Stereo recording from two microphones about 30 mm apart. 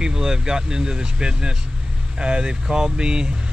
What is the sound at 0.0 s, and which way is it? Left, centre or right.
Speech, right.